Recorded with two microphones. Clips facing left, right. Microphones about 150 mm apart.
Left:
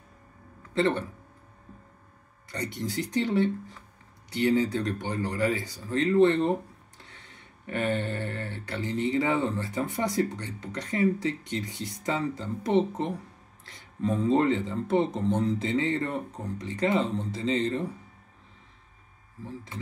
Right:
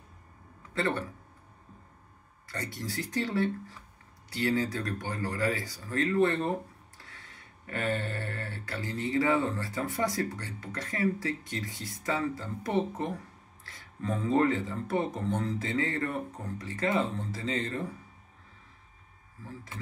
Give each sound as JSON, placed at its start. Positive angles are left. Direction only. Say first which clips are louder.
{"t": 0.7, "sound": "speech", "louder": "left 5 dB", "side_deg": 20}
{"t": 2.4, "sound": "speech", "louder": "left 4 dB", "side_deg": 20}